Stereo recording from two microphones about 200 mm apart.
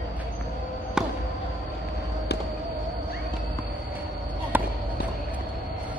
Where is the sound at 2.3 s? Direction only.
55° left (ahead or behind).